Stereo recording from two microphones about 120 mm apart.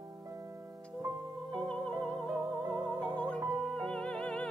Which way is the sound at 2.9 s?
35° right (ahead or behind).